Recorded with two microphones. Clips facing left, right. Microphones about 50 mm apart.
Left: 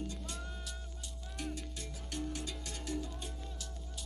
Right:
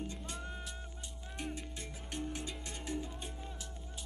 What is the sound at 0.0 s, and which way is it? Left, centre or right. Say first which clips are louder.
Music: even; right.